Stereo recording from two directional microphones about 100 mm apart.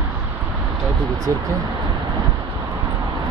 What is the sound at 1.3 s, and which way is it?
Speech, 30° right (ahead or behind).